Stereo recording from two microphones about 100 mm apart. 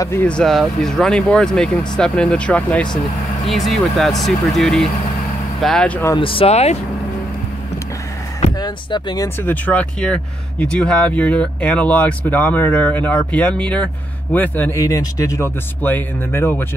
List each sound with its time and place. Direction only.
0.2 s speech: 10° left (ahead or behind)
3.4 s speech: centre (ahead or behind)
6.1 s speech: 60° left (ahead or behind); by 6.8 s 90° left
8.5 s speech: 40° left (ahead or behind)
9.4 s speech: 15° left (ahead or behind)
14.8 s speech: 35° left (ahead or behind)
15.8 s speech: 20° left (ahead or behind)